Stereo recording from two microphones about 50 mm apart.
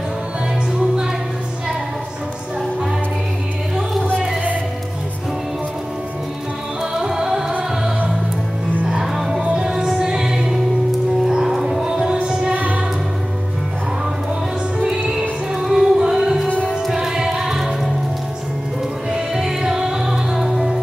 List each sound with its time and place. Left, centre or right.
6.8 s music: centre
8.8 s music: centre
14.8 s music: centre
16.4 s music: left
16.8 s music: centre
19.1 s music: centre